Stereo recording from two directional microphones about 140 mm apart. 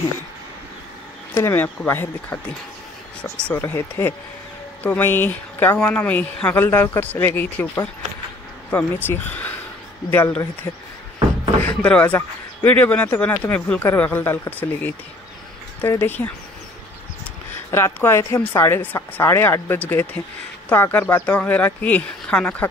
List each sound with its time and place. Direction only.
1.3 s speech: 15° left (ahead or behind)
11.6 s speech: 10° left (ahead or behind)
17.6 s speech: 20° left (ahead or behind)